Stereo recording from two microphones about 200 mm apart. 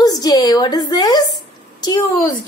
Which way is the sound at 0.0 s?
20° left (ahead or behind).